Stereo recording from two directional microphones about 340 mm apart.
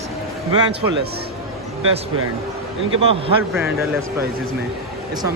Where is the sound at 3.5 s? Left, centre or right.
Centre.